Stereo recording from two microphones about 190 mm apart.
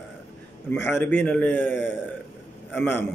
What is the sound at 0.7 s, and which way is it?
A man's voice, 10° left (ahead or behind).